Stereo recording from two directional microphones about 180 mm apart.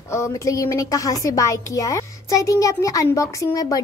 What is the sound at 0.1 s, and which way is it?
A woman's voice, 15° left (ahead or behind).